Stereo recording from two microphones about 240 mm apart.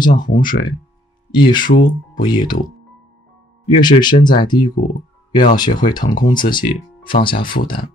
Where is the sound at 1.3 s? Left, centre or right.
Centre.